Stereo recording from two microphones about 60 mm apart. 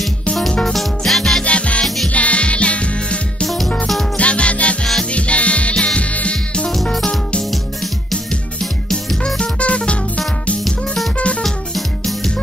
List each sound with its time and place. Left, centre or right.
0.4 s music: centre
1.4 s music: left
3.4 s music: centre
6.7 s music: centre
8.9 s music: centre
11.4 s music: centre